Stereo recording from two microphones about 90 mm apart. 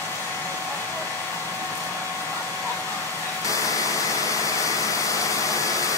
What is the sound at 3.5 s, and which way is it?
Vehicle, 40° left (ahead or behind).